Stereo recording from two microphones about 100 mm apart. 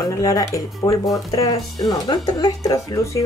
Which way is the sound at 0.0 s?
35° left (ahead or behind).